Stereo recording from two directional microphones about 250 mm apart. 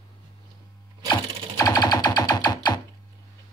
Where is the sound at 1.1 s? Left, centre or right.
Centre.